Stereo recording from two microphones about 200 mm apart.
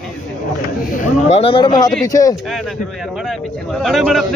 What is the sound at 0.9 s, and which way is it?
Speech, 35° left (ahead or behind).